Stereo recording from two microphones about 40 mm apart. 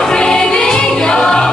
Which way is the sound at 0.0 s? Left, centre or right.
Centre.